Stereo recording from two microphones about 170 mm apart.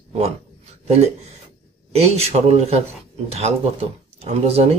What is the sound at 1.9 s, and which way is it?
Speech, 40° right (ahead or behind).